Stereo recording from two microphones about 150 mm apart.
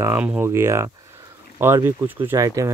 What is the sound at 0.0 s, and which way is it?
Speech, 10° right (ahead or behind).